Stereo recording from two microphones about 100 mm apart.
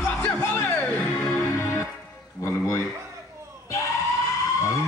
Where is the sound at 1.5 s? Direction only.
30° left (ahead or behind).